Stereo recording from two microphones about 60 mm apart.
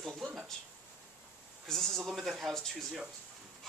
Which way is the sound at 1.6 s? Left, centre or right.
Centre.